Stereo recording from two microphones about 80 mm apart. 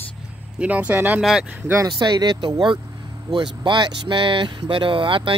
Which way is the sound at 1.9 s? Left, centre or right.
Right.